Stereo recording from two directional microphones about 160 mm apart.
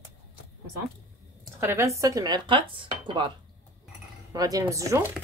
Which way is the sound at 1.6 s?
15° right (ahead or behind).